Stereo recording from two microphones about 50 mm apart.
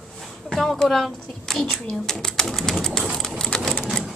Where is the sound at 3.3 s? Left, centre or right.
Centre.